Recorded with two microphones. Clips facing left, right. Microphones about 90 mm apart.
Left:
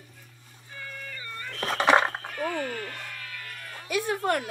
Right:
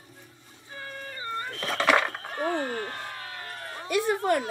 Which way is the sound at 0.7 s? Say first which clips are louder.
Right 2 dB; 35° right (ahead or behind).